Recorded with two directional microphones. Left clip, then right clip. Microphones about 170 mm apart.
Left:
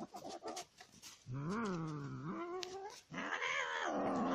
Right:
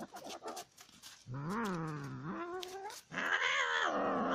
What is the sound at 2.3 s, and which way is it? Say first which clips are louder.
Cat: right 2 dB; 20° right (ahead or behind).